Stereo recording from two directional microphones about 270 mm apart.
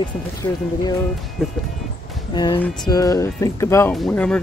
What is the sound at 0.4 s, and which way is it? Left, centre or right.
Speech, centre.